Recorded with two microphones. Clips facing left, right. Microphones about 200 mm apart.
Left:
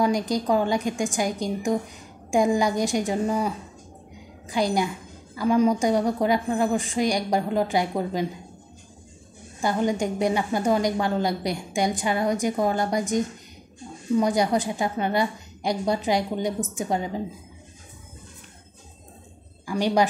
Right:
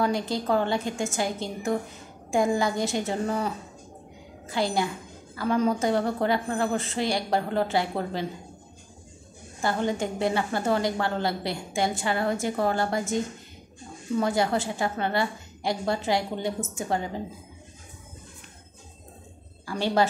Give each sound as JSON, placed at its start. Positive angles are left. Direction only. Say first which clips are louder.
{"t": 0.0, "sound": "a woman's voice", "louder": "left 3 dB", "side_deg": 15}
{"t": 9.6, "sound": "a woman's voice", "louder": "left 3 dB", "side_deg": 15}
{"t": 19.6, "sound": "a woman's voice", "louder": "left 2 dB", "side_deg": 15}